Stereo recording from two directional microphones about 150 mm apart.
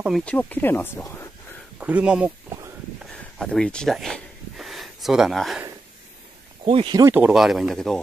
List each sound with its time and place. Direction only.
0.2 s speech: 10° left (ahead or behind)
1.8 s speech: 10° right (ahead or behind)
3.1 s a sound: 5° left (ahead or behind)
6.6 s speech: 35° right (ahead or behind)
7.0 s speech: 15° right (ahead or behind); by 8.0 s centre (ahead or behind)